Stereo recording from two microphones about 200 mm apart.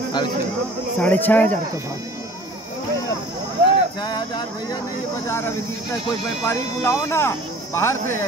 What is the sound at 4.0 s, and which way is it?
Speech, 20° left (ahead or behind).